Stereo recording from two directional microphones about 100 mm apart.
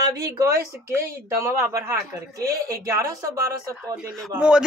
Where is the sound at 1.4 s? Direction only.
25° right (ahead or behind).